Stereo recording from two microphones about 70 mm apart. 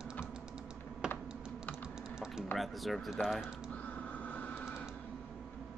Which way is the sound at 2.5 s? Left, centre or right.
Centre.